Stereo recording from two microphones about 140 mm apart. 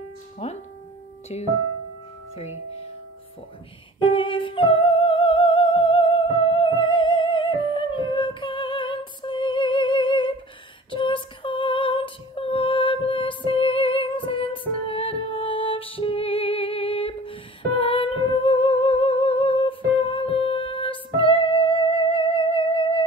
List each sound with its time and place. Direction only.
0.4 s speech: 45° left (ahead or behind)
4.0 s music: 40° left (ahead or behind)